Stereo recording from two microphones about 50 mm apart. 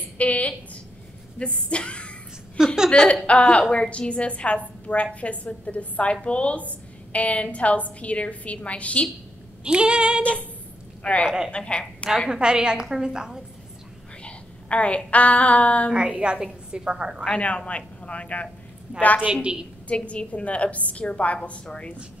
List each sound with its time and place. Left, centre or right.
0.2 s a woman's voice: left
2.5 s a sound: centre
2.9 s a woman's voice: left
9.7 s female singing: centre
11.2 s a woman's voice: centre
11.5 s a woman's voice: left
12.3 s a woman's voice: centre
14.2 s a woman's voice: left
16.1 s female singing: centre
16.7 s a woman's voice: centre
17.2 s a woman's voice: left